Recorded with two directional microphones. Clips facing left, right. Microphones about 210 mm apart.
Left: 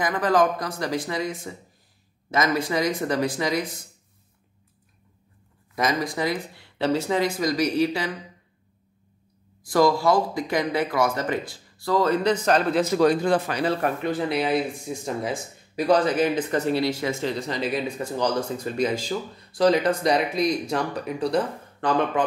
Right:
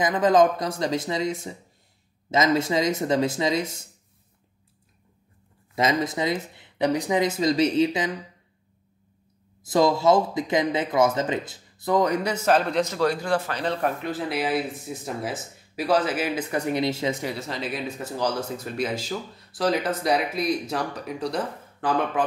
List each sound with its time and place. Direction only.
0.0 s speech: 20° right (ahead or behind)
5.8 s speech: 25° right (ahead or behind)
9.6 s speech: 20° right (ahead or behind); by 22.2 s 5° right (ahead or behind)